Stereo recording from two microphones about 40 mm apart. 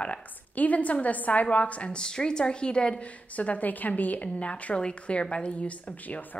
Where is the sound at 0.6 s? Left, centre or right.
Left.